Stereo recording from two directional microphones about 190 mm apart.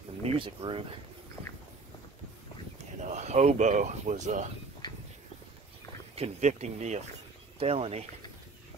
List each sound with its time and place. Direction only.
0.2 s speech: 30° right (ahead or behind)
3.1 s speech: 35° right (ahead or behind)
4.8 s a sound: 20° left (ahead or behind)
6.1 s speech: 35° right (ahead or behind)